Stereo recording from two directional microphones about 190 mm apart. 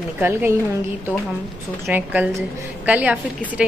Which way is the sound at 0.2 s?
10° right (ahead or behind).